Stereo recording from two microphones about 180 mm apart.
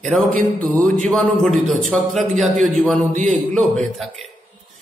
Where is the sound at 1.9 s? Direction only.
5° left (ahead or behind).